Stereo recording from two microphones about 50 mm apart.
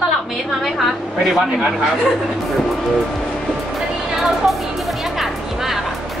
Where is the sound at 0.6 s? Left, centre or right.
Centre.